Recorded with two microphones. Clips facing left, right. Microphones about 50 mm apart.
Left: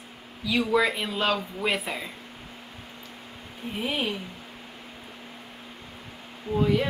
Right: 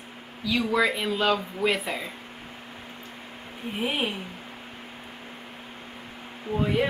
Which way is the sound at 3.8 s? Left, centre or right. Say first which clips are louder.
Right 1 dB; centre.